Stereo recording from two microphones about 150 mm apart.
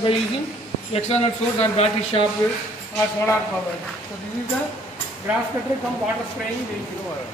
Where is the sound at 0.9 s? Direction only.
45° left (ahead or behind).